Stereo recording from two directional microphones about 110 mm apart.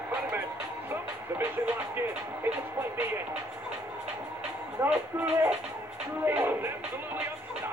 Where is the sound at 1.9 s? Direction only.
20° right (ahead or behind).